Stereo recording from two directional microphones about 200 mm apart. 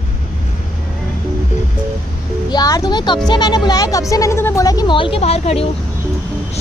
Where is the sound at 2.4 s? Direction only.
20° left (ahead or behind).